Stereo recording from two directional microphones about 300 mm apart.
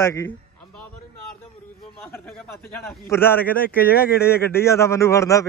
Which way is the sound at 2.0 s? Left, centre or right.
Centre.